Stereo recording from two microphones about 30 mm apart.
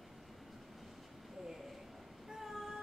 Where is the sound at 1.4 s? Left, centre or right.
Centre.